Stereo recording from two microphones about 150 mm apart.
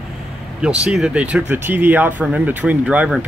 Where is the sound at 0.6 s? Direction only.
5° right (ahead or behind).